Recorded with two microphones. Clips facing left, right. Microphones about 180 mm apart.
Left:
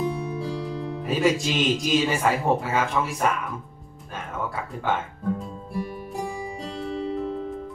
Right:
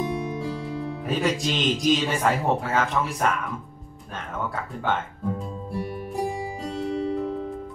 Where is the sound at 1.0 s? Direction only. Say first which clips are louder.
Left 3 dB; 5° left (ahead or behind).